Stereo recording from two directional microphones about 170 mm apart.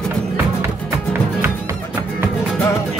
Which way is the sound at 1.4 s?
15° right (ahead or behind).